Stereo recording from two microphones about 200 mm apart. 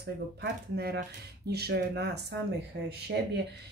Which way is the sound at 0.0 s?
55° right (ahead or behind).